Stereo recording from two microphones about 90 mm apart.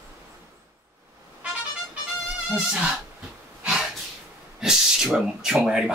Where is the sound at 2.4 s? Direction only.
15° right (ahead or behind).